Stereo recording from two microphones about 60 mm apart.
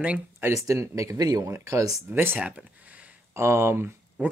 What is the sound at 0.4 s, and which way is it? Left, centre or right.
Speech, right.